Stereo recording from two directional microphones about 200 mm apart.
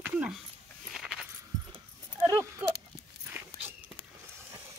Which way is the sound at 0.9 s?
5° right (ahead or behind).